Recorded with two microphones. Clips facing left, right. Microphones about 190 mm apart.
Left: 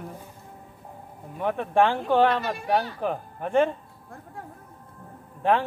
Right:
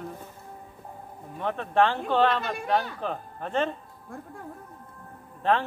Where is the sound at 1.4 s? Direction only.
10° left (ahead or behind).